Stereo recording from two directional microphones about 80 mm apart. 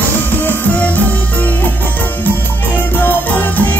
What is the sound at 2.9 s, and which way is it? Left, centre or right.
Music, left.